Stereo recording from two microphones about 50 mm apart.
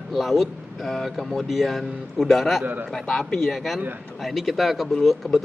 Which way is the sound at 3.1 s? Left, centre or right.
Centre.